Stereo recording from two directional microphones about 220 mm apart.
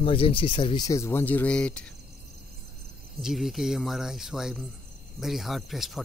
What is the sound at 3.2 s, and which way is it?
Speech, centre (ahead or behind).